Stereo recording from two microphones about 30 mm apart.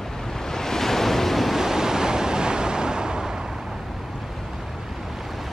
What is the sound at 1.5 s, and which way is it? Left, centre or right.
Waves, centre.